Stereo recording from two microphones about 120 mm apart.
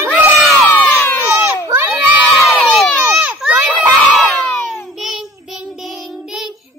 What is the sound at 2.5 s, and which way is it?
Crowd, centre (ahead or behind).